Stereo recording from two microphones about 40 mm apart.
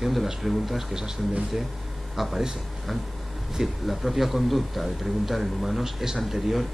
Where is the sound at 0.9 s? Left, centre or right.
Centre.